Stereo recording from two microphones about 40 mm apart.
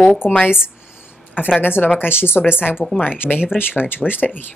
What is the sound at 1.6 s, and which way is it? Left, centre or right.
Speech, left.